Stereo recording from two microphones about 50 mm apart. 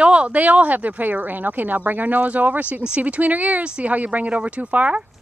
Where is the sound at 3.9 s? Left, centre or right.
Right.